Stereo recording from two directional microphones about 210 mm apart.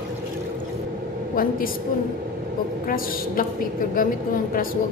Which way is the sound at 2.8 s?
45° left (ahead or behind).